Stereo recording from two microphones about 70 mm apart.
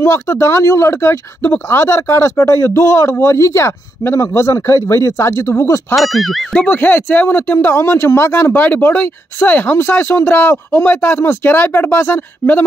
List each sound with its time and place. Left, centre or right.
0.0 s speech: left
5.9 s speech: centre
6.5 s speech: centre
6.8 s speech: left